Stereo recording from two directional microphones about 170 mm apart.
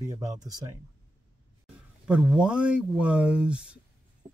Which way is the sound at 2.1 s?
5° right (ahead or behind).